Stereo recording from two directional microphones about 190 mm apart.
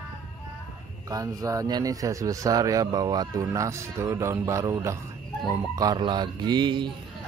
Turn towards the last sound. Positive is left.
turn(degrees=-25)  # may be behind; listen again after turning